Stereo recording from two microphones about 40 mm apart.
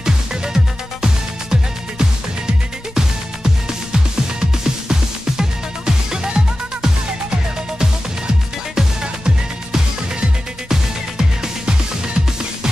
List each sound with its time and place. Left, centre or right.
0.0 s music: centre
8.7 s music: centre